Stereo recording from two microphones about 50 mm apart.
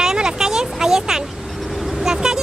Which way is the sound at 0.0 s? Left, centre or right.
Centre.